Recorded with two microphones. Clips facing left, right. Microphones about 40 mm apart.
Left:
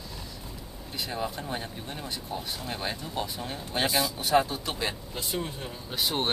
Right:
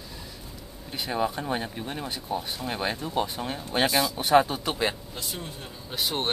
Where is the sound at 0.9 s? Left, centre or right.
Right.